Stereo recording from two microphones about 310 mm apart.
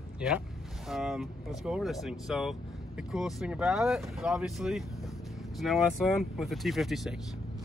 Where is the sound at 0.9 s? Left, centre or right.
Centre.